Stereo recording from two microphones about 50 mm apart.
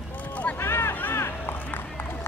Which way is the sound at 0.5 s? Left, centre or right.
Left.